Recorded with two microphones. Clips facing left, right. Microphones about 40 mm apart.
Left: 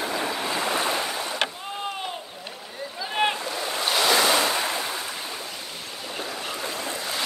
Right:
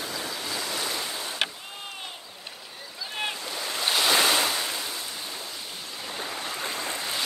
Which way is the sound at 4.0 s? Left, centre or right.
Left.